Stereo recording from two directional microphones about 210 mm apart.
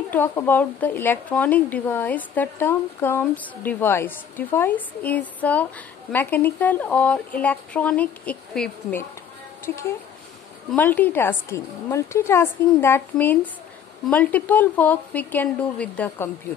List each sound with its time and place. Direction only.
0.1 s a woman's voice: 10° left (ahead or behind)
10.7 s a woman's voice: 10° left (ahead or behind)